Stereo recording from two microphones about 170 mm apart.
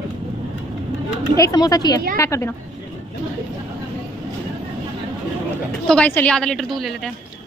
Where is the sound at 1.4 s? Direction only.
20° left (ahead or behind).